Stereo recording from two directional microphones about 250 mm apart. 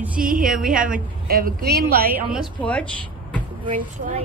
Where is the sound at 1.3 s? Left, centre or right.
Right.